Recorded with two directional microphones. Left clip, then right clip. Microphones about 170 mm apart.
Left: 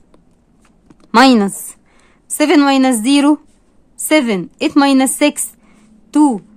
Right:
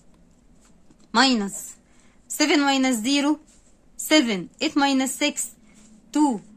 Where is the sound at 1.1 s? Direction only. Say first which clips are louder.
Left 10 dB; 40° left (ahead or behind).